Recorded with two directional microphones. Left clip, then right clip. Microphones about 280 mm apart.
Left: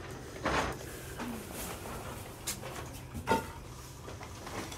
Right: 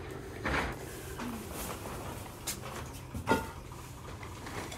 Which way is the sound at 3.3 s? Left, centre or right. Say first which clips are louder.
Even; centre.